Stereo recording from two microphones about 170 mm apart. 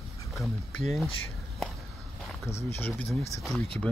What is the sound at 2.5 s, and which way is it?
Speech, 15° left (ahead or behind).